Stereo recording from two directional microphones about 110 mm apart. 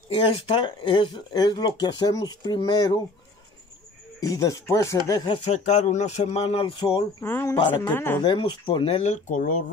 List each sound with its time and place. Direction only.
0.1 s speech: 55° left (ahead or behind)
1.3 s speech: 40° left (ahead or behind)
4.2 s speech: 30° left (ahead or behind)
5.3 s speech: 75° left (ahead or behind)
6.6 s speech: 45° left (ahead or behind)
7.2 s speech: 20° left (ahead or behind)
8.2 s speech: 40° left (ahead or behind)